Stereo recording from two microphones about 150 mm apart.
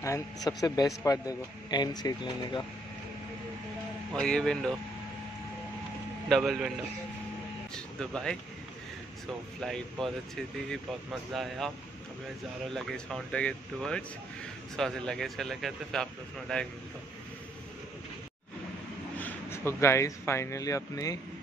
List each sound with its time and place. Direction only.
0.5 s speech: 25° left (ahead or behind)
4.1 s speech: 5° left (ahead or behind)
6.2 s a man's voice: centre (ahead or behind)
7.7 s speech: 5° left (ahead or behind)
9.6 s speech: centre (ahead or behind)
12.7 s speech: 5° left (ahead or behind)
19.1 s speech: 15° left (ahead or behind)